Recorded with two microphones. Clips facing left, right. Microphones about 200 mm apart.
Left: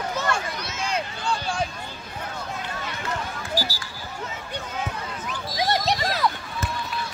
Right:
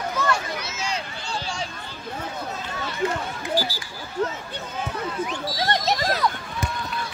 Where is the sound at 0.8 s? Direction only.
55° left (ahead or behind).